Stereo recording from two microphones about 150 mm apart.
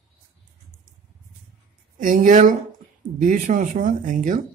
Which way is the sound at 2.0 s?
60° right (ahead or behind).